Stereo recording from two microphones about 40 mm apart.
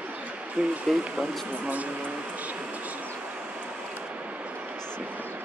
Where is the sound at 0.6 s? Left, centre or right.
Centre.